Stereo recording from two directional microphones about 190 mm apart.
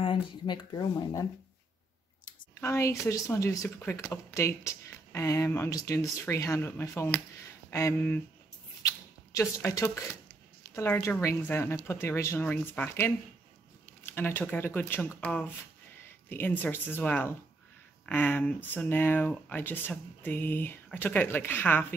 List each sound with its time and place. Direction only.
0.0 s speech: 25° left (ahead or behind)
2.6 s speech: 15° left (ahead or behind)
8.8 s rodents: 15° left (ahead or behind)
10.6 s speech: 15° left (ahead or behind)